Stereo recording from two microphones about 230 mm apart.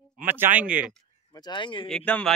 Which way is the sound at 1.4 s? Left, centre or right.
Centre.